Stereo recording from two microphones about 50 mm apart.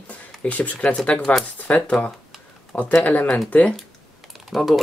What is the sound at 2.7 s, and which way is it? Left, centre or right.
Speech, centre.